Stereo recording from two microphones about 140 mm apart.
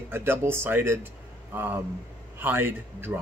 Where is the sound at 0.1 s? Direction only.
15° right (ahead or behind).